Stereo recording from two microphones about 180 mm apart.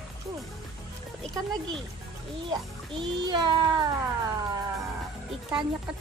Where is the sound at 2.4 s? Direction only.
25° right (ahead or behind).